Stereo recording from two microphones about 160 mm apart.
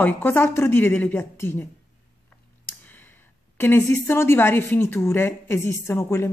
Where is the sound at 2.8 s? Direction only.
10° left (ahead or behind).